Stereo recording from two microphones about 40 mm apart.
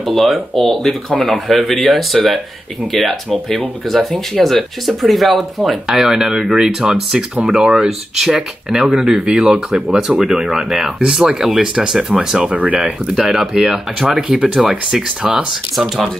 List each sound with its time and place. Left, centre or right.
0.0 s speech: centre
12.4 s speech: right
13.1 s speech: centre